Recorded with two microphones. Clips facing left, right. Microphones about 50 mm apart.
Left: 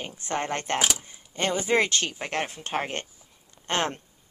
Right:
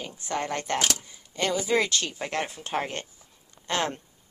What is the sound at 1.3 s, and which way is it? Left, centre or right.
A woman's voice, left.